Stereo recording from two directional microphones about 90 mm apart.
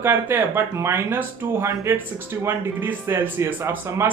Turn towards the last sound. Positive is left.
turn(degrees=-30)  # may be behind; listen again after turning